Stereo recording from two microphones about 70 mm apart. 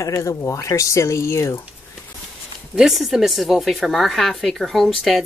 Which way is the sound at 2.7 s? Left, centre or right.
Centre.